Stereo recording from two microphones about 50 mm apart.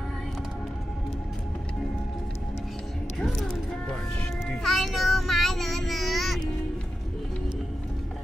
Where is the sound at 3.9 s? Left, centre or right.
Centre.